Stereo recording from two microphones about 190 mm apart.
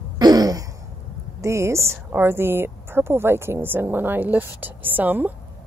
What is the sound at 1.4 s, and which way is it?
A woman's voice, 15° right (ahead or behind).